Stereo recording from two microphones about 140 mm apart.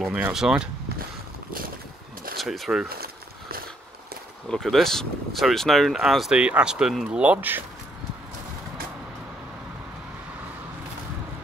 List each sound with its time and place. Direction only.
0.0 s speech: 5° right (ahead or behind)
2.3 s speech: centre (ahead or behind)
2.9 s a sound: 90° right
4.5 s speech: centre (ahead or behind); by 7.6 s 15° right (ahead or behind)